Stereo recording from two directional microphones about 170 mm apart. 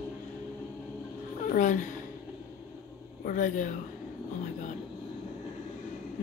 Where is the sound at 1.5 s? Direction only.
50° left (ahead or behind).